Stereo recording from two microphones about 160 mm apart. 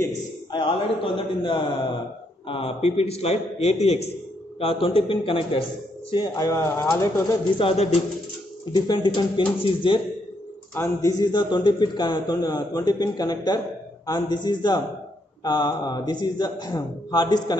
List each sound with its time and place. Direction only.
0.5 s a man's voice: 30° left (ahead or behind)
7.5 s a man's voice: 40° left (ahead or behind)
8.7 s a man's voice: 25° left (ahead or behind)
10.7 s a man's voice: 20° left (ahead or behind)